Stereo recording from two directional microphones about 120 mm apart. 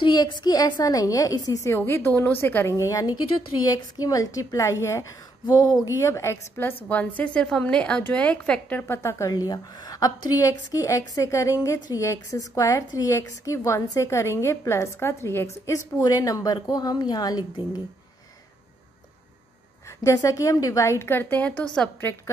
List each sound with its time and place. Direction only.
0.0 s a woman's voice: 35° left (ahead or behind); by 9.3 s 20° left (ahead or behind)
9.5 s a woman's voice: 30° left (ahead or behind)
20.0 s a woman's voice: 25° left (ahead or behind); by 21.9 s 10° left (ahead or behind)